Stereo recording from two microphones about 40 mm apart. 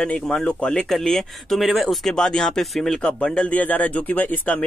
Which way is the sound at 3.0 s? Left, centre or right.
Left.